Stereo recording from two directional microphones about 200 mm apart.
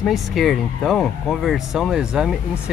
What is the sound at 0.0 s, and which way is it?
Speech, centre (ahead or behind).